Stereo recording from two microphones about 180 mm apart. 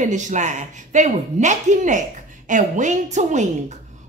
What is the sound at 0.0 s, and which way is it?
A woman's voice, 40° right (ahead or behind).